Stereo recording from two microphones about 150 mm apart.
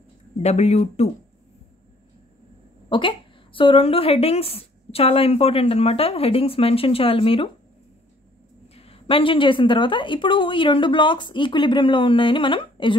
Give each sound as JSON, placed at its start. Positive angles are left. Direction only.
{"t": 0.4, "sound": "speech", "side_deg": 45}
{"t": 2.9, "sound": "a woman's voice", "side_deg": 35}
{"t": 8.7, "sound": "a woman's voice", "side_deg": 40}